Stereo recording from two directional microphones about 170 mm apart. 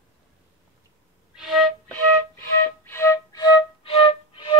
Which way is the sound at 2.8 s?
15° left (ahead or behind).